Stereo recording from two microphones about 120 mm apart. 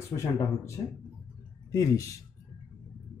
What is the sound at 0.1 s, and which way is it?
Speech, 25° left (ahead or behind).